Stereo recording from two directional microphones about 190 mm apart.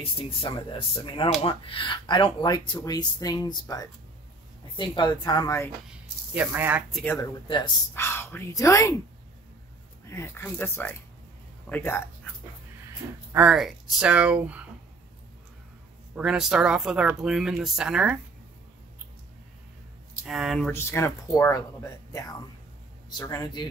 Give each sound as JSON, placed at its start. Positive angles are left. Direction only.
{"t": 0.4, "sound": "speech", "side_deg": 30}
{"t": 5.9, "sound": "speech", "side_deg": -5}
{"t": 7.4, "sound": "speech", "side_deg": 25}
{"t": 7.9, "sound": "speech", "side_deg": 10}
{"t": 10.0, "sound": "speech", "side_deg": 15}
{"t": 13.3, "sound": "speech", "side_deg": -5}
{"t": 16.2, "sound": "speech", "side_deg": -5}
{"t": 20.2, "sound": "speech", "side_deg": 0}
{"t": 20.7, "sound": "speech", "side_deg": 15}